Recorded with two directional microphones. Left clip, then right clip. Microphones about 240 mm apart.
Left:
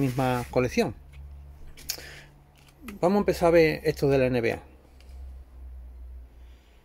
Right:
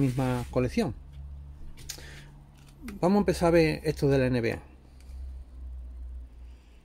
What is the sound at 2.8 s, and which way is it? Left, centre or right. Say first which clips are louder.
Speech: left 2 dB; centre.